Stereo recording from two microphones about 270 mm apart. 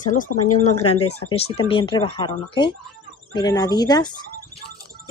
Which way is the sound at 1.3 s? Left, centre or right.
Left.